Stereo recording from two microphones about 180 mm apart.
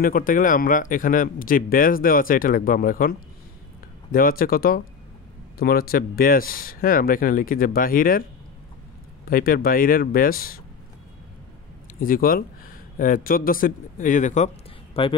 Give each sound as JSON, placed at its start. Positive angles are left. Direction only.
{"t": 0.0, "sound": "a man's voice", "side_deg": 50}
{"t": 12.0, "sound": "a man's voice", "side_deg": 50}
{"t": 15.0, "sound": "speech", "side_deg": 30}